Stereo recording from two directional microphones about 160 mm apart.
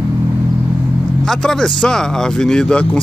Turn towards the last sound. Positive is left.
turn(degrees=5)  # may be behind; listen again after turning